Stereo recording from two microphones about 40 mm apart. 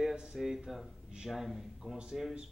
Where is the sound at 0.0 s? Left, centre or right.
Centre.